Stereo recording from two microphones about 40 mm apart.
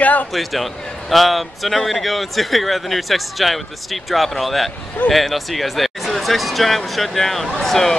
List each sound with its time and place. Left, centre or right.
0.0 s a man's voice: left
0.3 s speech: centre